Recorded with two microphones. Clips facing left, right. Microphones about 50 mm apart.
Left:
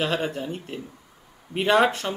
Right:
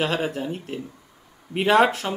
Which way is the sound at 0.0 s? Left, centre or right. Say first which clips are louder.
Right 1 dB; centre.